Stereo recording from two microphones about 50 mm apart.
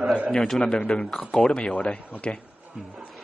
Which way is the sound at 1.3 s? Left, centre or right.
Centre.